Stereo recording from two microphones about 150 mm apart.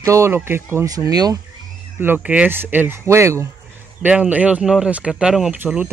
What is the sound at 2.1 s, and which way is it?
Speech, 5° right (ahead or behind).